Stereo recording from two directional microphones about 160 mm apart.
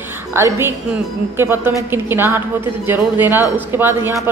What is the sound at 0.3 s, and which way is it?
A woman's voice, 15° right (ahead or behind).